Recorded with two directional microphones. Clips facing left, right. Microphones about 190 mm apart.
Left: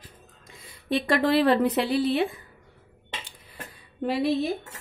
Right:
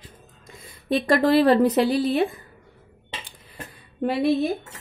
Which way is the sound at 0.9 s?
40° right (ahead or behind).